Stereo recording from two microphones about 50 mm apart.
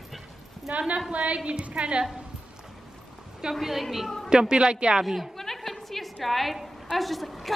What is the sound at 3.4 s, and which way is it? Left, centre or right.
Speech, centre.